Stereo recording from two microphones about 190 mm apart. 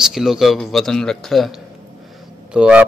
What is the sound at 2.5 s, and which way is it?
Speech, 5° right (ahead or behind).